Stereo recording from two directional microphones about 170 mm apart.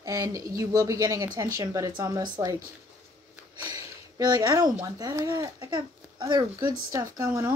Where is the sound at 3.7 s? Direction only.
20° right (ahead or behind).